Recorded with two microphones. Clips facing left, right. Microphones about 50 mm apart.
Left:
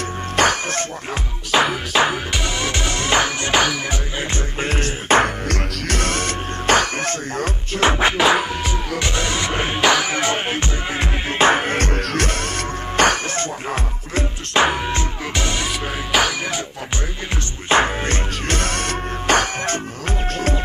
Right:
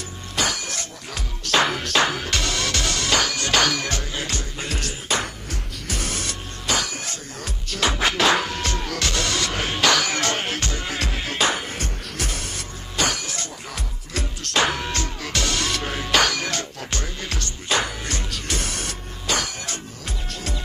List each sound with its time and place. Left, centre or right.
0.4 s music: left
1.5 s music: centre
4.6 s music: left
5.5 s music: left
7.7 s music: left
8.2 s music: centre; by 11.6 s left
11.6 s music: left
12.9 s music: left
14.1 s music: left
17.6 s music: left